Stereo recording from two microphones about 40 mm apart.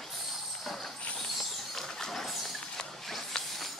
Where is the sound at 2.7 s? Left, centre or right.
Centre.